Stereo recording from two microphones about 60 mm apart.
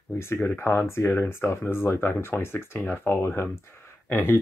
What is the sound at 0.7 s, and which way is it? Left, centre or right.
Speech, left.